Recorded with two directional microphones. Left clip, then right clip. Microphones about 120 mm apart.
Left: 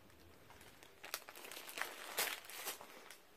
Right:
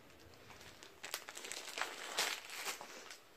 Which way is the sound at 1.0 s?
5° left (ahead or behind).